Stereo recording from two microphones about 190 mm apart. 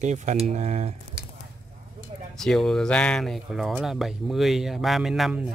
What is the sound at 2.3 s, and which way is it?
Speech, centre (ahead or behind).